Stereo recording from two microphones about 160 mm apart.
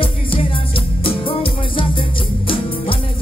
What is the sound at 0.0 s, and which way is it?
Music, 35° left (ahead or behind).